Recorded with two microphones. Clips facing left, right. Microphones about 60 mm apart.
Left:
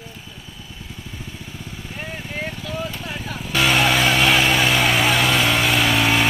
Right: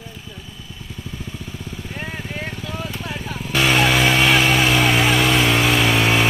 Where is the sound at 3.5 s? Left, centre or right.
Right.